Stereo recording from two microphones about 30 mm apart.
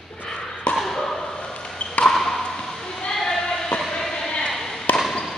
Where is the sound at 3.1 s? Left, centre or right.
Centre.